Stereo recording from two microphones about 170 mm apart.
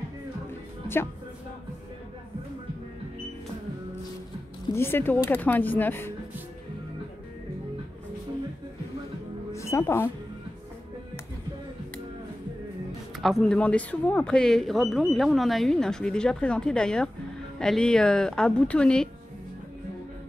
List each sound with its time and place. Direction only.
4.7 s speech: 15° left (ahead or behind)
9.5 s speech: 15° left (ahead or behind)
13.2 s speech: 5° left (ahead or behind)